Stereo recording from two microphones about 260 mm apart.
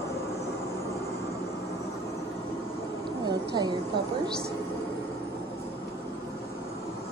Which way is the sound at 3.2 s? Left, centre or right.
Centre.